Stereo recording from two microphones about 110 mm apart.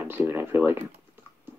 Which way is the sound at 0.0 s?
20° right (ahead or behind).